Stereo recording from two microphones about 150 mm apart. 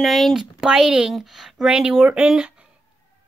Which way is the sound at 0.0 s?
Centre (ahead or behind).